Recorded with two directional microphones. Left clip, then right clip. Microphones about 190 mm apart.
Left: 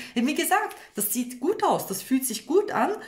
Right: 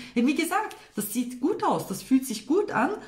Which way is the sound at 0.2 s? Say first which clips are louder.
Left 2 dB; 45° left (ahead or behind).